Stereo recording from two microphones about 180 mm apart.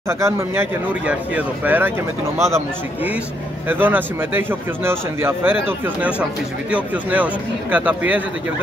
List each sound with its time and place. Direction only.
0.2 s a man's voice: 10° right (ahead or behind)